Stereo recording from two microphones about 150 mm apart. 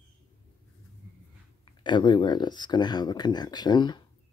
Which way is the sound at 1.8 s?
30° left (ahead or behind).